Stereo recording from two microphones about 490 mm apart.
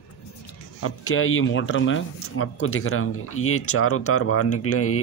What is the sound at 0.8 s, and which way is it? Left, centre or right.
Speech, left.